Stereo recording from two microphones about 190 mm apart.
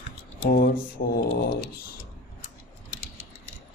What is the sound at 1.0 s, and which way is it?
Speech, 55° left (ahead or behind).